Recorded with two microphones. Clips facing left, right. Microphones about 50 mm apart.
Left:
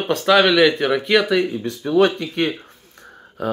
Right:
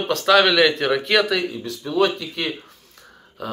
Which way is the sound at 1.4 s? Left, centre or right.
Left.